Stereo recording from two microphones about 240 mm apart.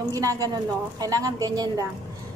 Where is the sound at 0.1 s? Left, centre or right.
Centre.